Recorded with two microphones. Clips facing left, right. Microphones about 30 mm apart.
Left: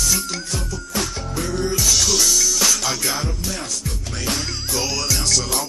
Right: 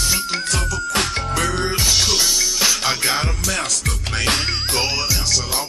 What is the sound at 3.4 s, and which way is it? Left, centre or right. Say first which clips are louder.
Music: right 5 dB; right.